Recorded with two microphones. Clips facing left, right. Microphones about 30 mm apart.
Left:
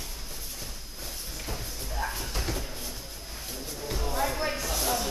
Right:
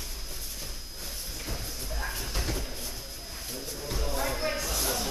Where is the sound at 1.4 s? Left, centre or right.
Centre.